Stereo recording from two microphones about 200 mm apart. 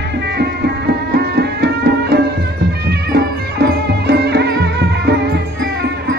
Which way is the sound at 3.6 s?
55° right (ahead or behind).